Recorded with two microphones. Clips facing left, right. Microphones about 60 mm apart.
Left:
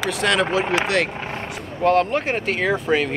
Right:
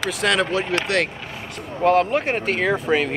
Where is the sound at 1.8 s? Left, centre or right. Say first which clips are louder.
Even; centre.